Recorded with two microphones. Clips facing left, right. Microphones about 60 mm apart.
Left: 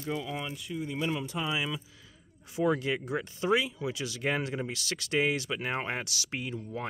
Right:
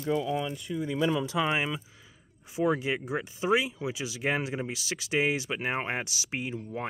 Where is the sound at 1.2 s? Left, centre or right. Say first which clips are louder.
Right 6 dB; right.